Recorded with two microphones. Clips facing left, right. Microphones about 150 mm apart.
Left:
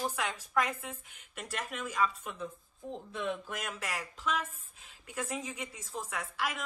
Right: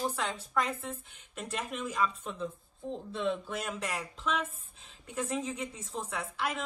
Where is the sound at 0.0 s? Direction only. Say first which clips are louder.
Right 1 dB; 10° left (ahead or behind).